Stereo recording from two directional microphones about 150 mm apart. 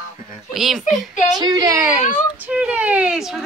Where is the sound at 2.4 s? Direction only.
10° right (ahead or behind).